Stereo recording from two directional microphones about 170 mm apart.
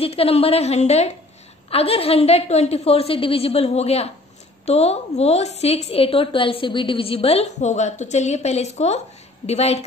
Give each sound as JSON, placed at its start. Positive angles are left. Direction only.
{"t": 0.0, "sound": "a woman's voice", "side_deg": 35}